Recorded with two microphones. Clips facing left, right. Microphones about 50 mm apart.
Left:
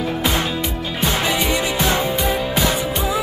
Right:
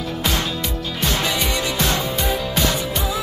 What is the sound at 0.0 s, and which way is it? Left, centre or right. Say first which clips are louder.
Music: left 3 dB; left.